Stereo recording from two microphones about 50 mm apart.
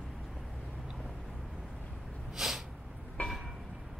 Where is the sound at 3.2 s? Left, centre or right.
Left.